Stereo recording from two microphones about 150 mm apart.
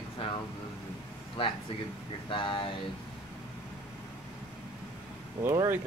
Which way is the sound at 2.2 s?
35° left (ahead or behind).